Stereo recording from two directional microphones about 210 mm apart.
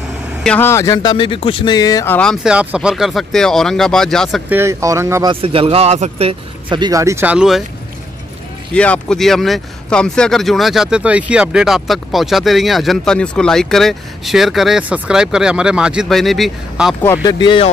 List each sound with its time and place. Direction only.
0.4 s speech: 5° left (ahead or behind)
2.1 s speech: centre (ahead or behind)
4.5 s speech: 10° right (ahead or behind)
8.7 s speech: 5° left (ahead or behind)
17.0 s speech: 15° left (ahead or behind)